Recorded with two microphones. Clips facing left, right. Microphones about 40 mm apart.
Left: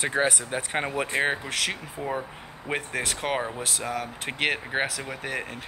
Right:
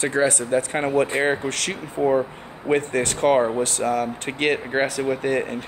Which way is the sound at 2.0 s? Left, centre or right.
Centre.